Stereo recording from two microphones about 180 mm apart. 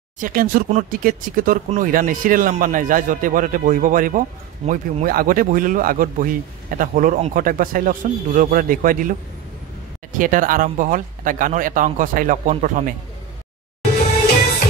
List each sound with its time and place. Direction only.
0.2 s speech: 50° right (ahead or behind)
10.1 s speech: 50° right (ahead or behind)